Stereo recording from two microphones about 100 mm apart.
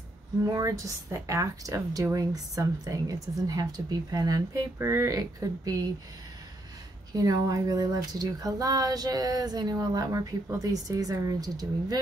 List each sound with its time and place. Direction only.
0.4 s speech: 35° right (ahead or behind)
7.1 s speech: 40° right (ahead or behind)